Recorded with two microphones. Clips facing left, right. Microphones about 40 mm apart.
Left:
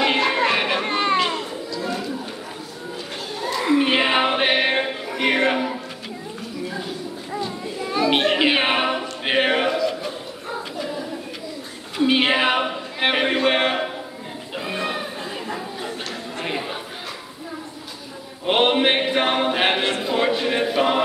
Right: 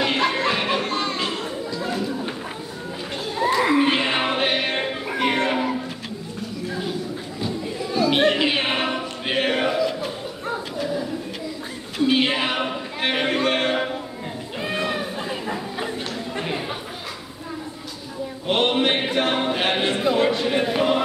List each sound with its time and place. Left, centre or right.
0.0 s music: centre
0.8 s children playing: left
3.7 s music: centre
5.2 s a sound: centre
7.9 s chatter: left
8.2 s a sound: centre
12.0 s a sound: centre
18.5 s music: centre
20.2 s chant: centre